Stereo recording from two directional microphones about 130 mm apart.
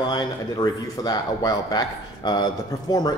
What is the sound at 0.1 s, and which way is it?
Speech, 35° left (ahead or behind).